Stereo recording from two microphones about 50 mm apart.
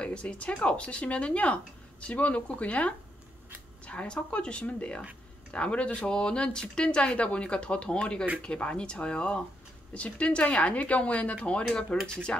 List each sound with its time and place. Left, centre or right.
0.0 s speech: left